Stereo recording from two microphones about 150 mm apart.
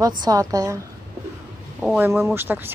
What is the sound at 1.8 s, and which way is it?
Speech, 10° right (ahead or behind).